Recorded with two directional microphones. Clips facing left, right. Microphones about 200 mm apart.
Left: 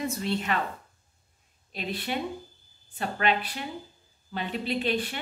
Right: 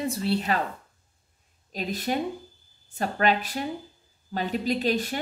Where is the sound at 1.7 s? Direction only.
40° right (ahead or behind).